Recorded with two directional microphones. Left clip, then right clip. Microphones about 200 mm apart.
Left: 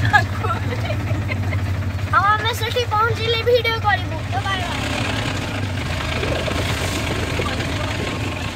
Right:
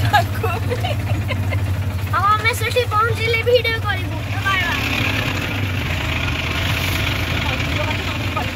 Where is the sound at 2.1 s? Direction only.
10° right (ahead or behind).